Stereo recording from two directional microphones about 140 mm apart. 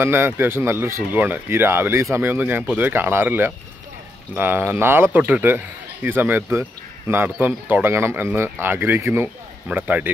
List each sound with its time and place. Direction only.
0.0 s speech: 15° right (ahead or behind)